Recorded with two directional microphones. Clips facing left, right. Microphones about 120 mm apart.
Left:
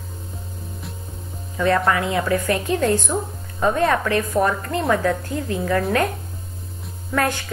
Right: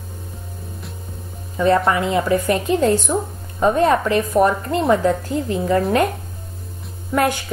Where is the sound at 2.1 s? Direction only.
20° right (ahead or behind).